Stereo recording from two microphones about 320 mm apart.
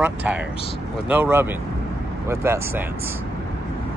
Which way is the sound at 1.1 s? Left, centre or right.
Centre.